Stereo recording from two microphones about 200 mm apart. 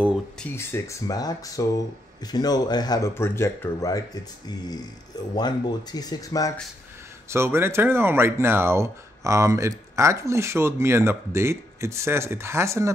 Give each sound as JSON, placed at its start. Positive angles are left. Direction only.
{"t": 0.0, "sound": "a sound", "side_deg": -5}
{"t": 0.6, "sound": "speech", "side_deg": 15}
{"t": 5.3, "sound": "speech", "side_deg": 20}
{"t": 7.2, "sound": "speech", "side_deg": -10}